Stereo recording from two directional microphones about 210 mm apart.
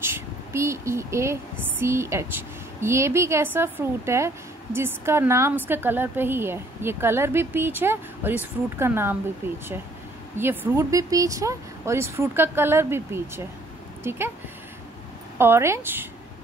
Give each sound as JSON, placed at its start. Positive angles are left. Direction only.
{"t": 0.0, "sound": "a woman's voice", "side_deg": -10}
{"t": 10.3, "sound": "a woman's voice", "side_deg": -10}
{"t": 15.3, "sound": "a woman's voice", "side_deg": -10}